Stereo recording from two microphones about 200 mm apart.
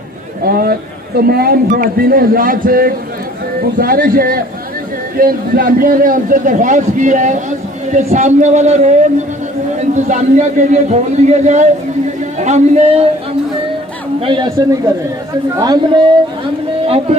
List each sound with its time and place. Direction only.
0.4 s a man's voice: 50° right (ahead or behind); by 13.1 s 30° right (ahead or behind)
14.2 s a man's voice: 20° right (ahead or behind)
16.8 s a sound: 30° right (ahead or behind)